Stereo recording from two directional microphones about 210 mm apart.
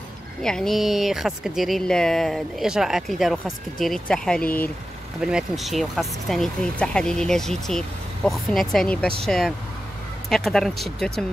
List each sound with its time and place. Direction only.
0.4 s speech: 5° left (ahead or behind)